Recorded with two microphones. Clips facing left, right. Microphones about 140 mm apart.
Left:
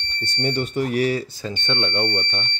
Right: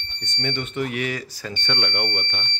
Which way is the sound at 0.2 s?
35° left (ahead or behind).